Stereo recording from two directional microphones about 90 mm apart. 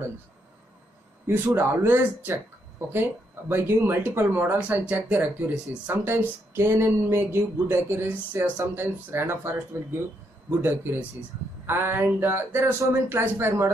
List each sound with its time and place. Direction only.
1.2 s speech: 25° right (ahead or behind)
10.6 s speech: 25° right (ahead or behind)